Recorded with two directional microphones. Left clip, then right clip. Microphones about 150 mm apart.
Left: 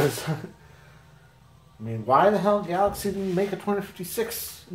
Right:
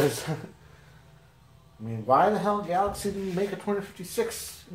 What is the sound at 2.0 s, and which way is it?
Speech, 35° left (ahead or behind).